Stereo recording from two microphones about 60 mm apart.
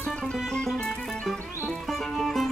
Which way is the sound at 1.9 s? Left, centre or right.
Centre.